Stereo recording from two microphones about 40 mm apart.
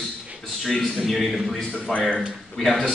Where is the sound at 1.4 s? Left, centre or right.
Centre.